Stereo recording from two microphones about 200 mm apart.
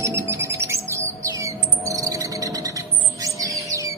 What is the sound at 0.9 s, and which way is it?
Chirp, 15° right (ahead or behind).